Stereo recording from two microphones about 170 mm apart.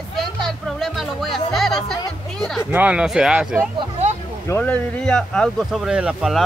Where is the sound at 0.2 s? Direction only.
Centre (ahead or behind).